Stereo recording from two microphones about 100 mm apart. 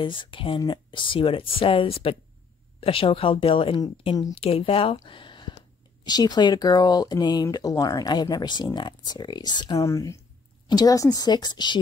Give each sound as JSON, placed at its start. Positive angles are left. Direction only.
{"t": 0.0, "sound": "speech", "side_deg": 55}
{"t": 5.0, "sound": "a sound", "side_deg": 55}
{"t": 6.0, "sound": "speech", "side_deg": 45}
{"t": 9.8, "sound": "speech", "side_deg": 30}